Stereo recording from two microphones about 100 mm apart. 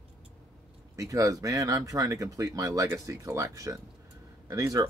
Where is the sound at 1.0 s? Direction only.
35° right (ahead or behind).